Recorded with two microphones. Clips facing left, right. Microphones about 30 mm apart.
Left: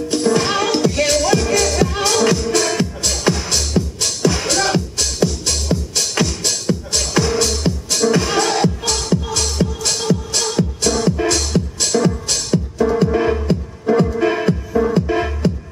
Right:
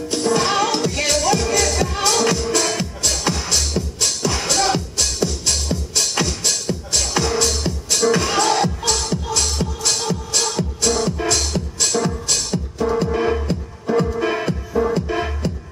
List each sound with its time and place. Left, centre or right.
0.1 s music: centre
2.7 s music: centre